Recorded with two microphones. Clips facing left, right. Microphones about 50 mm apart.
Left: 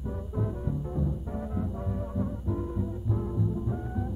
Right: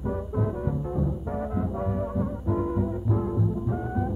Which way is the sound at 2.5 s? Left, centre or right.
Right.